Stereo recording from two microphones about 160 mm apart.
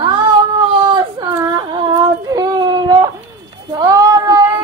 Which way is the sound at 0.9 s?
25° right (ahead or behind).